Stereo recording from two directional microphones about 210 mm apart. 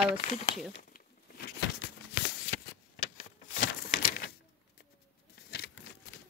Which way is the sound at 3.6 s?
45° left (ahead or behind).